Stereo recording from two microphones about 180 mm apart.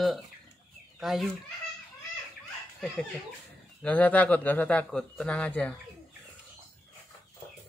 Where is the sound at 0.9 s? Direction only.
Centre (ahead or behind).